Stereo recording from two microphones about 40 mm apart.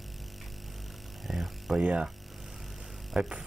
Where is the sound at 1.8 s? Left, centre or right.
Right.